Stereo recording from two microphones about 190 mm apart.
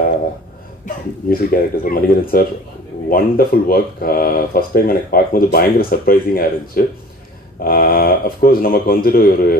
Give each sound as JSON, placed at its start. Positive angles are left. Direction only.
{"t": 0.8, "sound": "speech", "side_deg": 50}